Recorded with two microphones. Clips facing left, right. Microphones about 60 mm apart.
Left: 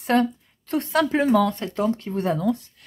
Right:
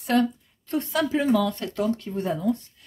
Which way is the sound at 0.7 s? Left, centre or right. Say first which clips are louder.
Left 3 dB; left.